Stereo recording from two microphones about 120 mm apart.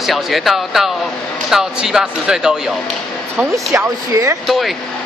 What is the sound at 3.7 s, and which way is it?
Speech, 25° right (ahead or behind).